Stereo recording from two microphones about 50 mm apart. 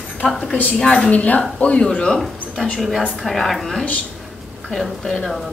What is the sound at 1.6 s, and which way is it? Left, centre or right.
Speech, centre.